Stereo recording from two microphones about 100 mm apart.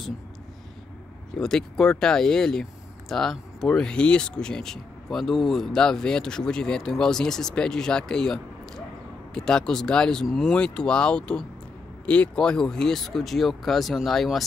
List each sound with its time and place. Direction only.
1.4 s speech: 5° left (ahead or behind)